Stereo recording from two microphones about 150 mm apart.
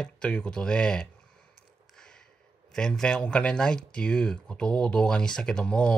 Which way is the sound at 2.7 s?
5° left (ahead or behind).